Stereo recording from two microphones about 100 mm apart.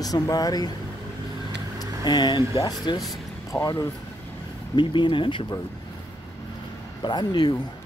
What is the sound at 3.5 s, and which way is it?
Speech, 35° left (ahead or behind).